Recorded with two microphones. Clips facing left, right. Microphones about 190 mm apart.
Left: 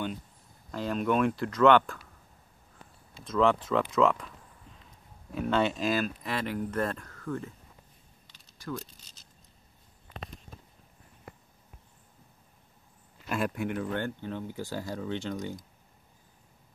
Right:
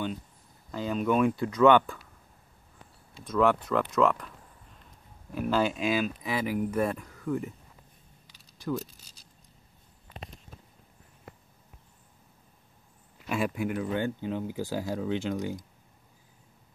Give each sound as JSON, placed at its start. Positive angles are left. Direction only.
{"t": 0.7, "sound": "speech", "side_deg": 0}
{"t": 3.3, "sound": "speech", "side_deg": -5}
{"t": 5.3, "sound": "speech", "side_deg": -5}
{"t": 8.3, "sound": "keys jangling", "side_deg": -10}
{"t": 13.3, "sound": "speech", "side_deg": 0}